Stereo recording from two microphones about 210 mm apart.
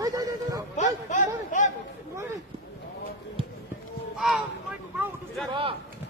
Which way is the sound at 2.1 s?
15° right (ahead or behind).